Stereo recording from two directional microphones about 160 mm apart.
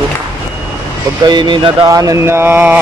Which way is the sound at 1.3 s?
30° right (ahead or behind).